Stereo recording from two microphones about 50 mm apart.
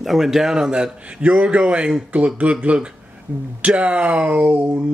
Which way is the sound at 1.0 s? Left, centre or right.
Right.